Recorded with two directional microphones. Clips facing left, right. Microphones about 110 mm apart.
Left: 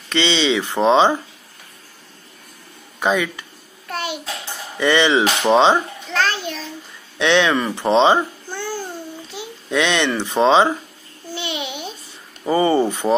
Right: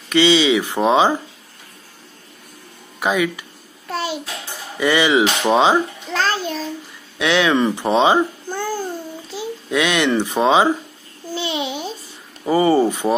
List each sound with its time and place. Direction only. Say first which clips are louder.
0.1 s speech: right 4 dB; 10° right (ahead or behind)
3.0 s speech: even; 10° right (ahead or behind)
3.9 s a sound: right 2 dB; 30° right (ahead or behind)
4.7 s speech: even; 10° right (ahead or behind)
6.2 s a sound: right 2 dB; 40° right (ahead or behind)
7.2 s speech: left 1 dB; 5° right (ahead or behind)
7.5 s speech: even; 20° right (ahead or behind)
9.7 s speech: right 1 dB; 5° right (ahead or behind)
11.3 s babbling: right 4 dB; 35° right (ahead or behind)
12.4 s speech: right 1 dB; 5° right (ahead or behind)